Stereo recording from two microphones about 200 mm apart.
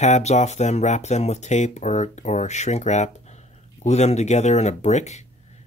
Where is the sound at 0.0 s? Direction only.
35° left (ahead or behind).